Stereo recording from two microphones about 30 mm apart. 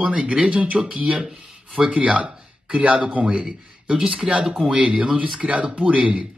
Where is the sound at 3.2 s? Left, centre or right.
Right.